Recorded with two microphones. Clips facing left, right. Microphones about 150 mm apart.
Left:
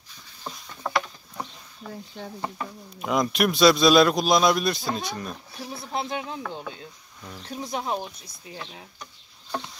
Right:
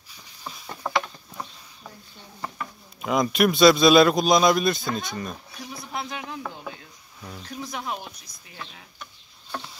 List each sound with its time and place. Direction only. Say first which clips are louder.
0.8 s a sound: right 1 dB; 5° right (ahead or behind)
2.2 s a sound: left 11 dB; 85° left
3.0 s a man's voice: right 2 dB; centre (ahead or behind)
5.6 s speech: left 4 dB; 30° left (ahead or behind)
7.2 s speech: right 2 dB; 5° right (ahead or behind)
7.4 s speech: left 3 dB; 30° left (ahead or behind)